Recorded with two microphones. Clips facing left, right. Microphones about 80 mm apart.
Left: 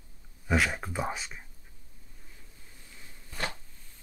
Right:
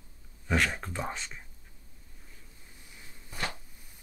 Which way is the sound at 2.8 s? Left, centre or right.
Centre.